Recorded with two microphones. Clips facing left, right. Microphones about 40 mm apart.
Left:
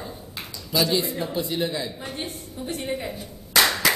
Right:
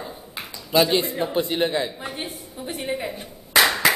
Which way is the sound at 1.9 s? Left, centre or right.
Centre.